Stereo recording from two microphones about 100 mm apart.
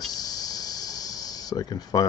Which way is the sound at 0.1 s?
40° left (ahead or behind).